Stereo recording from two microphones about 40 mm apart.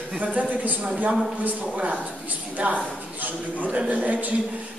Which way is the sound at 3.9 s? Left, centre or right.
Right.